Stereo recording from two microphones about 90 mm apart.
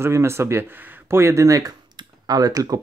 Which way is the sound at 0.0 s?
30° right (ahead or behind).